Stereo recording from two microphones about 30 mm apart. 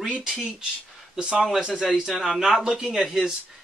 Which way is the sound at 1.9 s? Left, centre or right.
Centre.